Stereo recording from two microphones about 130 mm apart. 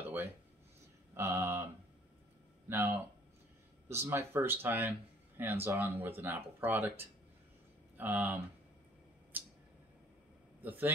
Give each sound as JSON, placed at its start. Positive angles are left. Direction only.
{"t": 1.1, "sound": "a sound", "side_deg": -20}
{"t": 2.7, "sound": "speech", "side_deg": -15}
{"t": 10.6, "sound": "a man's voice", "side_deg": -15}